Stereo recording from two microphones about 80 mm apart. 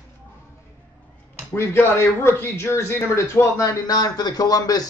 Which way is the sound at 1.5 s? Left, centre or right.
Left.